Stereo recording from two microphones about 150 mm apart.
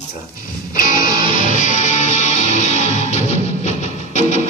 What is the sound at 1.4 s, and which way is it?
Music, 55° left (ahead or behind).